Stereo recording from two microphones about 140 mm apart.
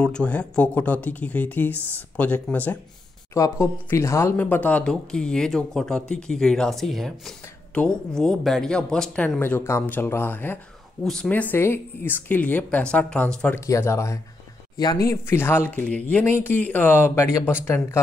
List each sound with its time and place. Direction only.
0.0 s speech: 5° left (ahead or behind)
3.3 s speech: 20° left (ahead or behind)
13.6 s speech: 20° left (ahead or behind)